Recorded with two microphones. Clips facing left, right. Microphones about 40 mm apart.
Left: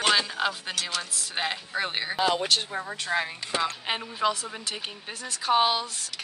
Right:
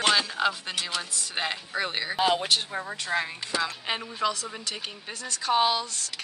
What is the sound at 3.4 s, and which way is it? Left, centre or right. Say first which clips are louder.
Speech: left 1 dB; left.